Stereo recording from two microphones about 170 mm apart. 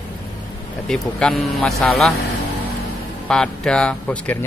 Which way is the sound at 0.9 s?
5° left (ahead or behind).